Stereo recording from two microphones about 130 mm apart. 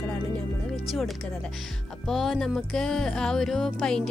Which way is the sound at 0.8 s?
Centre (ahead or behind).